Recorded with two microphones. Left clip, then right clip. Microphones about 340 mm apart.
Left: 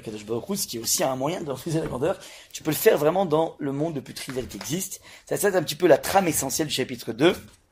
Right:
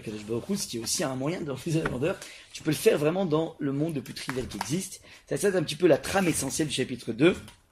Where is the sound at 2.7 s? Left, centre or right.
Left.